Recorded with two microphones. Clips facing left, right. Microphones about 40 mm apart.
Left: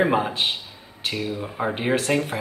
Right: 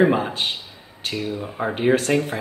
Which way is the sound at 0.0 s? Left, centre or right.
Centre.